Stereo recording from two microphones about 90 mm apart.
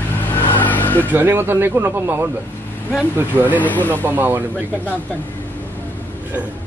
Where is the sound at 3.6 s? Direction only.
20° left (ahead or behind).